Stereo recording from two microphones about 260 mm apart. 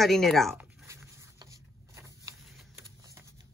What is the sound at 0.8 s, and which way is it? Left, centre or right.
Zipper, centre.